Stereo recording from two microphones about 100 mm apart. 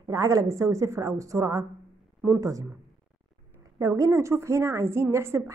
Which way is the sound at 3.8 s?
30° right (ahead or behind).